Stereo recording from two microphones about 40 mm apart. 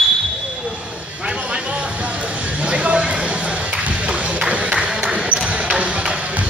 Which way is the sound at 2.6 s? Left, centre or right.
Right.